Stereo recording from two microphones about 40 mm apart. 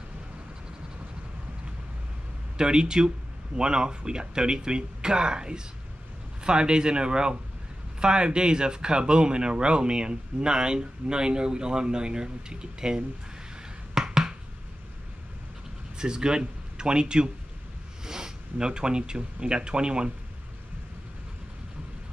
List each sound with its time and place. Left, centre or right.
2.5 s speech: right
13.9 s a sound: centre
16.0 s speech: centre